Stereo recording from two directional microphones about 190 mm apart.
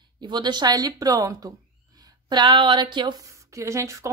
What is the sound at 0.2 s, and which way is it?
A woman's voice, 20° right (ahead or behind).